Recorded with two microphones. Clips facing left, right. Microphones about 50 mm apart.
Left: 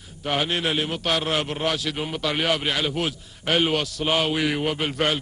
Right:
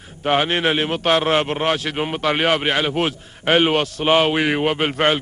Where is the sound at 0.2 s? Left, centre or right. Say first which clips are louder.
Right 6 dB; right.